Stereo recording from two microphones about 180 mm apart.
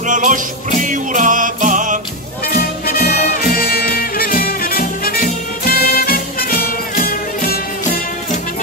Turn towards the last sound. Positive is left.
turn(degrees=55)  # may be behind; listen again after turning